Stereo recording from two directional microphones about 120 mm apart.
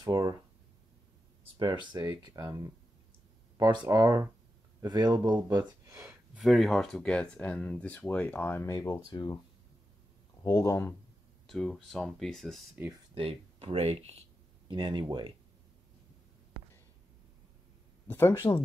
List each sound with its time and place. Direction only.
0.0 s speech: 35° right (ahead or behind)
1.9 s speech: 35° right (ahead or behind)
5.7 s speech: 25° right (ahead or behind)
6.3 s speech: centre (ahead or behind); by 9.1 s 25° left (ahead or behind)
9.1 s speech: 35° left (ahead or behind)
10.4 s speech: 30° left (ahead or behind)
11.4 s speech: 5° left (ahead or behind)
13.1 s speech: 50° right (ahead or behind)
14.7 s speech: 40° right (ahead or behind)
18.0 s speech: 20° left (ahead or behind)